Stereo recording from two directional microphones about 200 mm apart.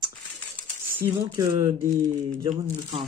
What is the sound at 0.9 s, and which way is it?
Speech, 15° right (ahead or behind).